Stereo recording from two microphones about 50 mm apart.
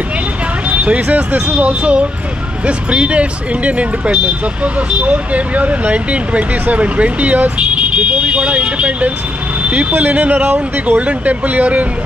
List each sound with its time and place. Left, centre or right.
0.7 s speech: right